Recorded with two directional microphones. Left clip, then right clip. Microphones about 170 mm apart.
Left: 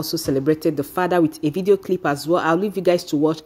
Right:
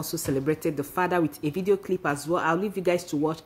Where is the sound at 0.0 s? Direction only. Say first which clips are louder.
Left 7 dB; 20° left (ahead or behind).